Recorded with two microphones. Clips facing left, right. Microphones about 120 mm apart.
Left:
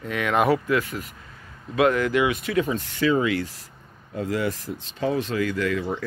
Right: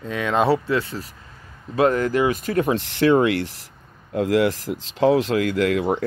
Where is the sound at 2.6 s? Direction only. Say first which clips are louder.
Right 7 dB; 65° right (ahead or behind).